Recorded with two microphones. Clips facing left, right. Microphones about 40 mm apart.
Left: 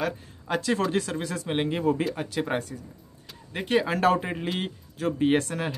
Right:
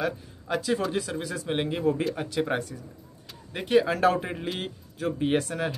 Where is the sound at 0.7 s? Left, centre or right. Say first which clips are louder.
Left 2 dB; centre.